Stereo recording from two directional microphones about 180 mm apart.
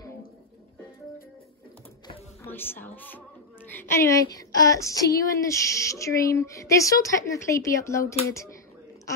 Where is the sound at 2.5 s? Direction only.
10° left (ahead or behind).